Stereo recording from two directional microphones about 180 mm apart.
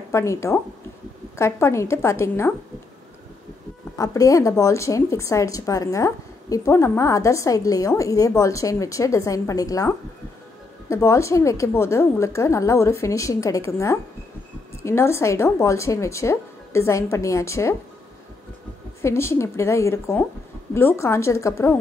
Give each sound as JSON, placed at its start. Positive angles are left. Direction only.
{"t": 0.1, "sound": "a woman's voice", "side_deg": 15}
{"t": 4.0, "sound": "a woman's voice", "side_deg": 20}
{"t": 18.9, "sound": "a woman's voice", "side_deg": 15}